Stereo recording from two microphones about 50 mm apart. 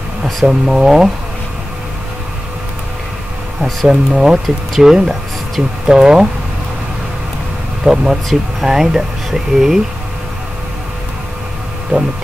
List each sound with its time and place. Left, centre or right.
0.2 s speech: centre
3.8 s speech: centre
7.8 s speech: centre
11.9 s hum: right